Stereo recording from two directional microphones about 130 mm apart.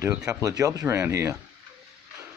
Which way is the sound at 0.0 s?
20° right (ahead or behind).